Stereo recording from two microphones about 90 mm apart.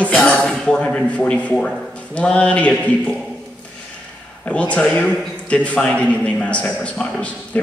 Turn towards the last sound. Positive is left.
turn(degrees=15)  # may be behind; listen again after turning